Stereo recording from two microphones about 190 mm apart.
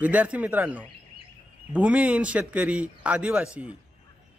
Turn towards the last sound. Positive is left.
turn(degrees=-5)  # may be behind; listen again after turning